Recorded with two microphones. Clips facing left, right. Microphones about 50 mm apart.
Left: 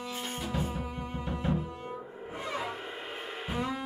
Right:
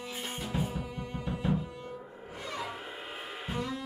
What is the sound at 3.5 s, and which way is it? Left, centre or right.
Music, left.